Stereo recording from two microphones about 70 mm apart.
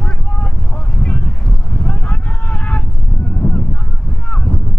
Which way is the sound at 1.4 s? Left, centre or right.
Centre.